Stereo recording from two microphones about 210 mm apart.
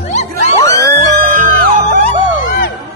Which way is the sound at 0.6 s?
15° left (ahead or behind).